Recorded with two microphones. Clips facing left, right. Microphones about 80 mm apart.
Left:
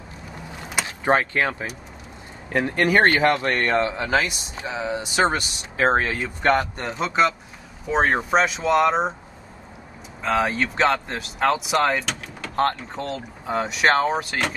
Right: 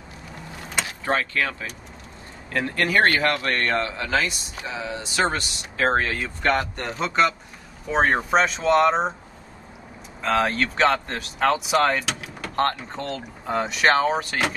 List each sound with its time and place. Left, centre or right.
0.8 s speech: left
6.4 s speech: centre
10.2 s speech: centre